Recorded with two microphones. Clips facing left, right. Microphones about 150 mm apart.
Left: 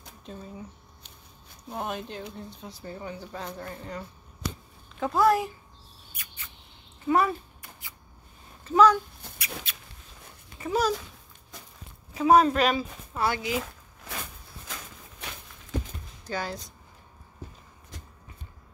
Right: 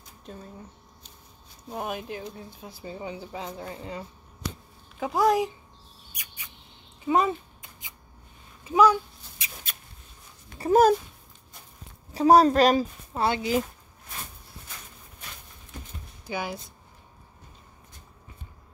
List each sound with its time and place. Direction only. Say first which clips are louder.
0.2 s speech: even; centre (ahead or behind)
1.7 s speech: right 1 dB; 5° right (ahead or behind)
2.8 s speech: right 2 dB; 15° right (ahead or behind)
5.0 s speech: even; 15° right (ahead or behind)
6.1 s mouse: even; 10° right (ahead or behind)
7.1 s a sound: even; 20° right (ahead or behind)
8.6 s speech: even; 10° right (ahead or behind)
9.7 s a sound: right 1 dB; 45° right (ahead or behind)
10.6 s speech: right 8 dB; 50° right (ahead or behind)
11.5 s walk: left 5 dB; 90° left
12.1 s speech: right 2 dB; 35° right (ahead or behind)
14.7 s a sound: left 6 dB; 90° left
16.3 s speech: right 1 dB; 10° right (ahead or behind)